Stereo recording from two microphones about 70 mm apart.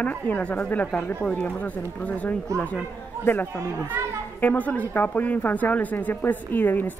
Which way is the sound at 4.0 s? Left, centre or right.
Right.